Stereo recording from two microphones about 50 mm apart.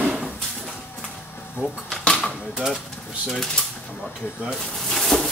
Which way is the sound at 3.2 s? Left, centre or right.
Centre.